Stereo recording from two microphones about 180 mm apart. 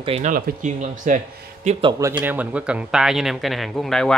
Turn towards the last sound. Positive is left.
turn(degrees=5)  # may be behind; listen again after turning